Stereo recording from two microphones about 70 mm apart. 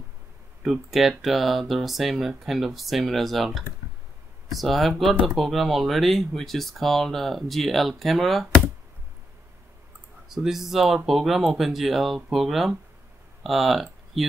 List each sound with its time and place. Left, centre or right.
0.7 s speech: centre
10.2 s speech: centre